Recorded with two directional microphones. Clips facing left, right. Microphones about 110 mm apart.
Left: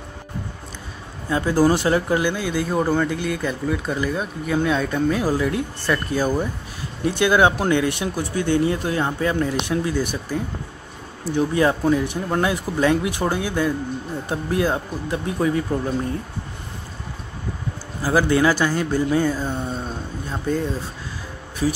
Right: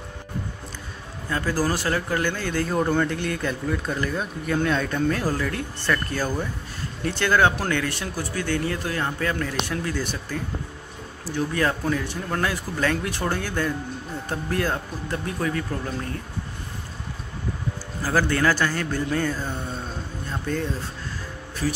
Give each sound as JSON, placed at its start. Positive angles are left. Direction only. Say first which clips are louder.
{"t": 1.3, "sound": "speech", "louder": "left 7 dB", "side_deg": 20}
{"t": 18.0, "sound": "speech", "louder": "left 4 dB", "side_deg": 15}